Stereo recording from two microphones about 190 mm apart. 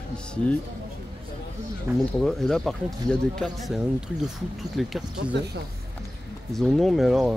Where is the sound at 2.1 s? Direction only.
Centre (ahead or behind).